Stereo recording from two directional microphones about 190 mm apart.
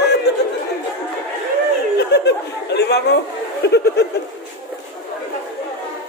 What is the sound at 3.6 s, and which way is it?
Speech, 60° left (ahead or behind).